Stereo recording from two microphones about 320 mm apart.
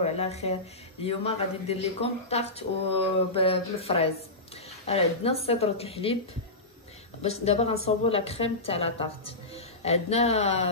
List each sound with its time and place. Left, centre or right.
0.0 s speech: centre
7.4 s speech: centre